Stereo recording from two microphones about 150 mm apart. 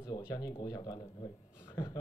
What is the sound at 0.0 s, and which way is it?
A man's voice, 25° left (ahead or behind).